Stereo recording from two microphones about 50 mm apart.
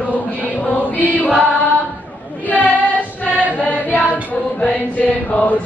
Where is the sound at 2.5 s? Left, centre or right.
Left.